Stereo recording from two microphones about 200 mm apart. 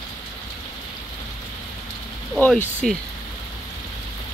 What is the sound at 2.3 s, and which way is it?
Speech, 5° left (ahead or behind).